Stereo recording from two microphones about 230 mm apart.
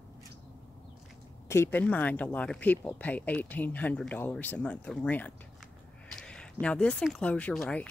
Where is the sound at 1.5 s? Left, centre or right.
Centre.